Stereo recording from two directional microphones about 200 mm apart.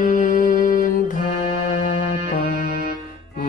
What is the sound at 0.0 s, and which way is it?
Music, 40° left (ahead or behind).